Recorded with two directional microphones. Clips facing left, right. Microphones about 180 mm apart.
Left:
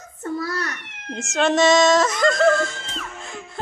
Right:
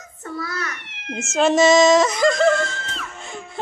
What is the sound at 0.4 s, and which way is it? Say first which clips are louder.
Cat: left 2 dB; 35° left (ahead or behind).